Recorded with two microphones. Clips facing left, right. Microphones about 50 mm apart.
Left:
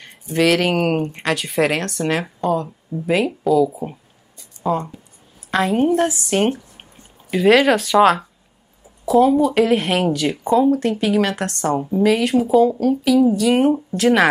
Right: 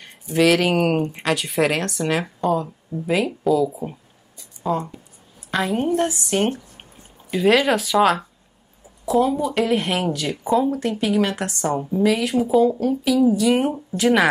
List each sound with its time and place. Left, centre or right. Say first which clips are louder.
0.0 s a woman's voice: even; centre
6.3 s speech: left 2 dB; centre
9.0 s a sound: left 5 dB; centre
9.6 s speech: left 4 dB; centre